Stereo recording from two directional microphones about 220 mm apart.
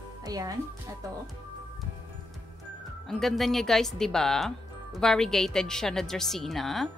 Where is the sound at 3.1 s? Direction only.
Centre (ahead or behind).